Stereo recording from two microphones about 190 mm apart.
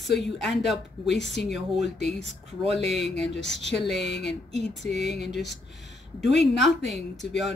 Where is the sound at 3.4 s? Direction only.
70° left (ahead or behind).